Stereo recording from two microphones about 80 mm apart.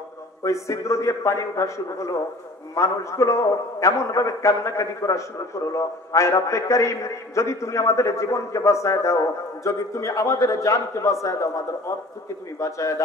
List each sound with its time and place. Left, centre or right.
0.4 s a man's voice: left